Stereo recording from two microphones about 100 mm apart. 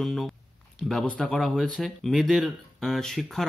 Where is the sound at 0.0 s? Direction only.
Centre (ahead or behind).